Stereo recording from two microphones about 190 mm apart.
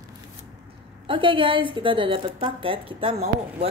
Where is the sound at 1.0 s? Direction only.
25° right (ahead or behind).